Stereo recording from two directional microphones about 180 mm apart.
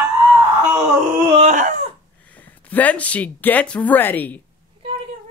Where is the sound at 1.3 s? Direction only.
45° right (ahead or behind).